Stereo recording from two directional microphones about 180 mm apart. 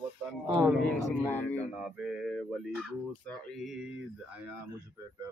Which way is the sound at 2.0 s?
Centre (ahead or behind).